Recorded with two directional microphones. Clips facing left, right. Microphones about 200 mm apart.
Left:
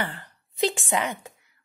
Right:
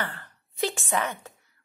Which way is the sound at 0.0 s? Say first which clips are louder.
Left 3 dB; 15° left (ahead or behind).